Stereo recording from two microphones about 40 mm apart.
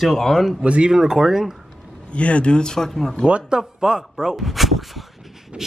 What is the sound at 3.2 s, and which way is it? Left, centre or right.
Speech, right.